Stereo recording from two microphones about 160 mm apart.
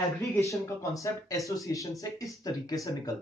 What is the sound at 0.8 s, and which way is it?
Speech, 20° left (ahead or behind).